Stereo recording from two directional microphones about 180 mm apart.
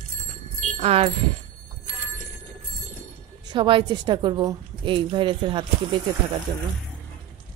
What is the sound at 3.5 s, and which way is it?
A woman's voice, 30° right (ahead or behind).